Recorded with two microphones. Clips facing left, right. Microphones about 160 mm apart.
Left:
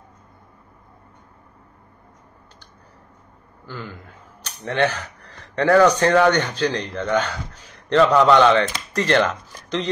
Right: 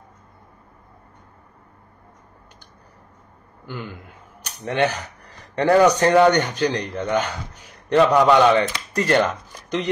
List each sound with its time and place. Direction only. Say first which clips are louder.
3.6 s a man's voice: right 1 dB; 15° right (ahead or behind)